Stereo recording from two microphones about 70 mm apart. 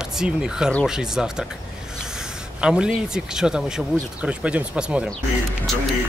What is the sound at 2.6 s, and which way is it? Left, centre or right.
A man's voice, centre.